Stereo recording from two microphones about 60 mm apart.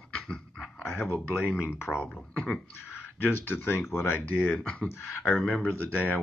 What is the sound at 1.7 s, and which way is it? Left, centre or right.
Speech, left.